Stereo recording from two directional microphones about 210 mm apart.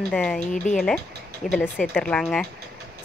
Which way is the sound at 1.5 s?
10° left (ahead or behind).